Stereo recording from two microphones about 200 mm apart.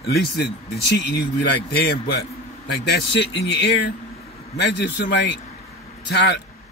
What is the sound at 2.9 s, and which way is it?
Speech, 55° left (ahead or behind).